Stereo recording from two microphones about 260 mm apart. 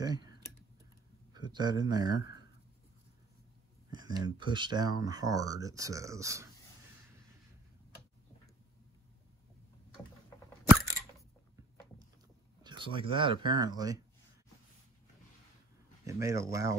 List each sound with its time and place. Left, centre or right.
0.0 s typing: centre
1.3 s speech: centre
3.9 s speech: centre
12.6 s speech: centre
16.1 s speech: centre